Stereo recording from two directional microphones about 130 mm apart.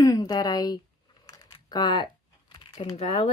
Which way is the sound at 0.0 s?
25° left (ahead or behind).